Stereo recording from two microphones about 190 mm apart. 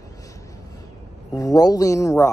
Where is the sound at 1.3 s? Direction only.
20° left (ahead or behind).